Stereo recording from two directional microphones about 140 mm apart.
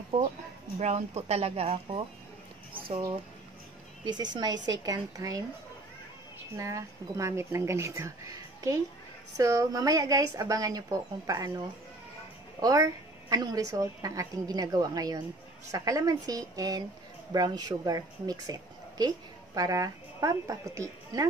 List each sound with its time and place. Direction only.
0.1 s speech: 40° right (ahead or behind)
0.7 s speech: 55° right (ahead or behind)
4.0 s a woman's voice: 30° right (ahead or behind)
6.5 s a woman's voice: 20° right (ahead or behind)